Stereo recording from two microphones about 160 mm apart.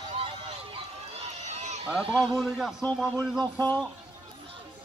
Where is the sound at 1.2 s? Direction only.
45° right (ahead or behind).